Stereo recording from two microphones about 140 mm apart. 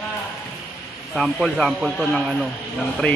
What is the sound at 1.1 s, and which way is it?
Speech, centre (ahead or behind).